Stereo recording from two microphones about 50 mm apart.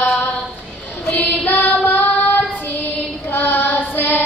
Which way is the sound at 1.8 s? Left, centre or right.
Left.